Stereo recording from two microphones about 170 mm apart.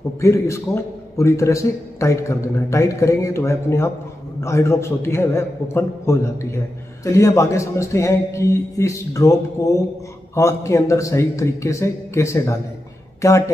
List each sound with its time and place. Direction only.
0.2 s a man's voice: 15° left (ahead or behind)